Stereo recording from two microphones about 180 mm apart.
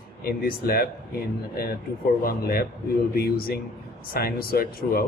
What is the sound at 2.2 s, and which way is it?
Speech, 55° left (ahead or behind).